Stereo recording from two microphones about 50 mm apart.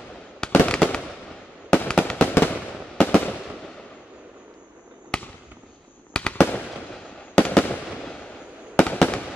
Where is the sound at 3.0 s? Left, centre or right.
Left.